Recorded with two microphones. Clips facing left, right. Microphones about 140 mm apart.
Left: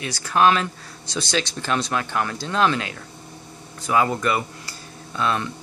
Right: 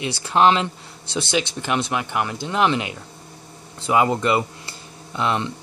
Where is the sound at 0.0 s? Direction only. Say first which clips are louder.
Right 1 dB; 25° right (ahead or behind).